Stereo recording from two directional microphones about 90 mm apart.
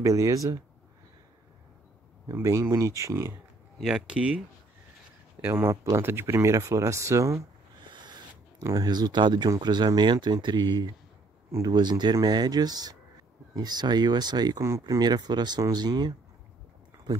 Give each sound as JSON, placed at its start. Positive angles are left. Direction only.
{"t": 0.0, "sound": "speech", "side_deg": -40}
{"t": 2.7, "sound": "speech", "side_deg": -35}
{"t": 3.8, "sound": "speech", "side_deg": -10}
{"t": 5.4, "sound": "speech", "side_deg": -25}
{"t": 7.8, "sound": "owl", "side_deg": -60}
{"t": 8.6, "sound": "speech", "side_deg": -50}